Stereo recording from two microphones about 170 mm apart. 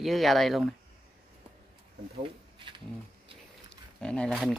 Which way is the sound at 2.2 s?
30° right (ahead or behind).